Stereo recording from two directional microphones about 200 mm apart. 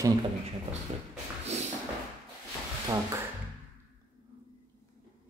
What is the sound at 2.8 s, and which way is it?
Speech, 15° right (ahead or behind).